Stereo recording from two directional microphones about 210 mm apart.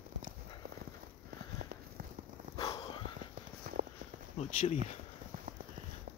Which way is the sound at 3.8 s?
40° right (ahead or behind).